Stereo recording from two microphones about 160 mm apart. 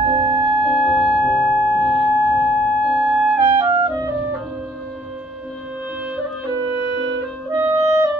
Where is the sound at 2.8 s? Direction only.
Centre (ahead or behind).